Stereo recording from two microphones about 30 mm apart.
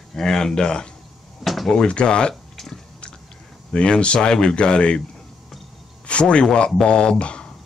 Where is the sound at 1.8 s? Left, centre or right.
Left.